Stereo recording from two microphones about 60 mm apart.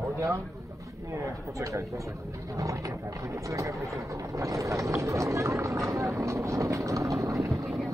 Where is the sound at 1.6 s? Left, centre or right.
Right.